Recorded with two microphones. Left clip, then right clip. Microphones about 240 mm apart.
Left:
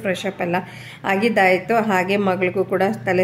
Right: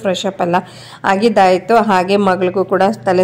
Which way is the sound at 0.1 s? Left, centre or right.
Centre.